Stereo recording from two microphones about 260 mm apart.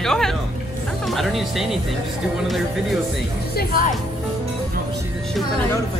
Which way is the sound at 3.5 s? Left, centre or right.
Left.